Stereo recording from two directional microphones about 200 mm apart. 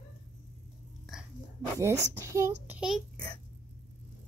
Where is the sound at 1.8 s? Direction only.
15° right (ahead or behind).